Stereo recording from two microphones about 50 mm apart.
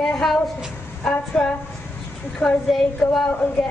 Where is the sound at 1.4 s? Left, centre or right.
Centre.